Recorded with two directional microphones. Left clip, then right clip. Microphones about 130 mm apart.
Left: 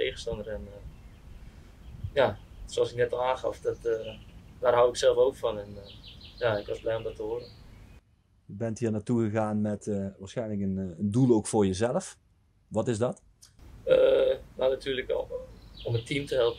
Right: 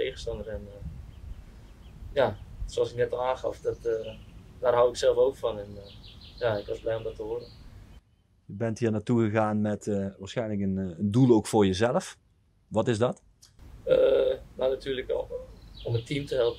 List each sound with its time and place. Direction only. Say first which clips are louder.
0.0 s speech: even; centre (ahead or behind)
2.1 s speech: even; centre (ahead or behind)
8.5 s speech: right 3 dB; 20° right (ahead or behind)
13.8 s burping: even; centre (ahead or behind)
15.8 s speech: left 1 dB; centre (ahead or behind)